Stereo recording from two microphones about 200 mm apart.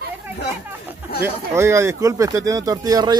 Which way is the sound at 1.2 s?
15° right (ahead or behind).